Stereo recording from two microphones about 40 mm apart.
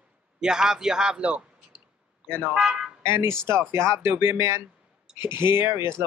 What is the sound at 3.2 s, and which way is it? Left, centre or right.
Speech, right.